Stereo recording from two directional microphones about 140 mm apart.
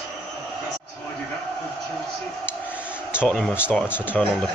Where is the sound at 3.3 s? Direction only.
5° left (ahead or behind).